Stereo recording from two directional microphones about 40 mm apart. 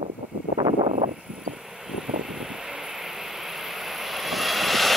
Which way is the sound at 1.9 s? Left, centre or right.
Centre.